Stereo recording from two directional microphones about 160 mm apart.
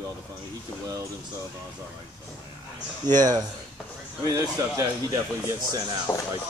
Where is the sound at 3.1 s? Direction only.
25° right (ahead or behind).